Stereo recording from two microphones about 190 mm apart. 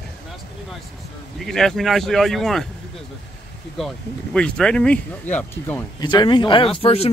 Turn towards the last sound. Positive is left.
turn(degrees=30)  # may be behind; listen again after turning